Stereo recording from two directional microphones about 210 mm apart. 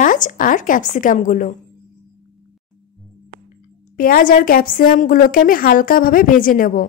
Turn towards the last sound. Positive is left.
turn(degrees=40)  # may be behind; listen again after turning